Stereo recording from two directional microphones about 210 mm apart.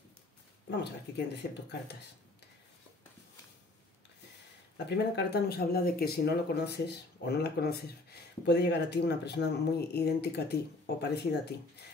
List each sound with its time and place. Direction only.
0.7 s speech: 55° left (ahead or behind)
4.7 s speech: 55° left (ahead or behind)